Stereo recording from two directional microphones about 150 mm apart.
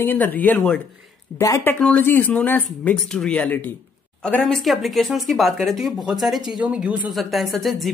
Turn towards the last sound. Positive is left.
turn(degrees=0)  # may be behind; listen again after turning